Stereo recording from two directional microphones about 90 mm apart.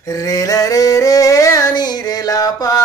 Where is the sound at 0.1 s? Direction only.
40° left (ahead or behind).